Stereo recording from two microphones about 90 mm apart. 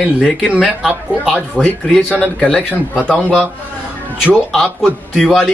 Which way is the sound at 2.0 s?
15° left (ahead or behind).